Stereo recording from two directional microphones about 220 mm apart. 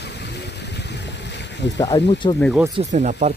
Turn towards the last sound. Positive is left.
turn(degrees=-35)  # may be behind; listen again after turning